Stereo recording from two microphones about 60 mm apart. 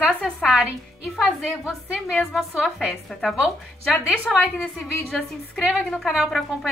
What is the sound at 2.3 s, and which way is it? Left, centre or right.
A woman's voice, centre.